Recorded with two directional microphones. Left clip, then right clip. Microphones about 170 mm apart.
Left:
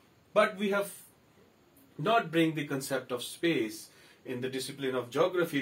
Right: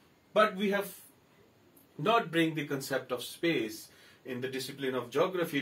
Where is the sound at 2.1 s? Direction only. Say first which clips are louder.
Left 1 dB; 10° left (ahead or behind).